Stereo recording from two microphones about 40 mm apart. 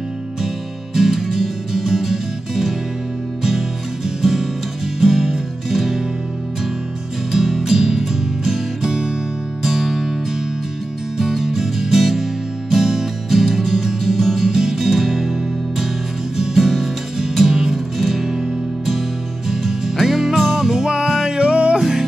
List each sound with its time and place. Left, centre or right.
0.9 s music: centre
7.6 s music: centre
11.1 s music: centre
16.3 s music: centre
19.5 s music: centre; by 21.7 s right
21.7 s music: centre